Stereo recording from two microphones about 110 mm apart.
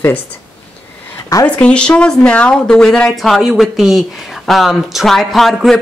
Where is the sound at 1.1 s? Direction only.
30° left (ahead or behind).